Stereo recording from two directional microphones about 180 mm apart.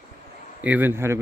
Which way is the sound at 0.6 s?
10° right (ahead or behind).